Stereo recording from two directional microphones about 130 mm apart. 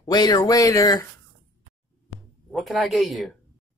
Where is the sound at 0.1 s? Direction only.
30° left (ahead or behind).